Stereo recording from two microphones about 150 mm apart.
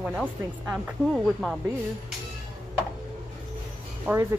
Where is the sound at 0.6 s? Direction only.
5° right (ahead or behind).